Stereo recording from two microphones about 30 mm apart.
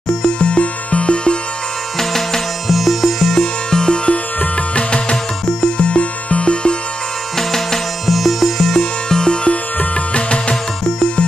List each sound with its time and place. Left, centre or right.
0.2 s music: left
2.0 s music: centre
2.7 s music: centre
3.3 s music: left
4.7 s music: left
7.3 s music: centre
8.1 s music: centre
8.7 s music: left
10.1 s music: left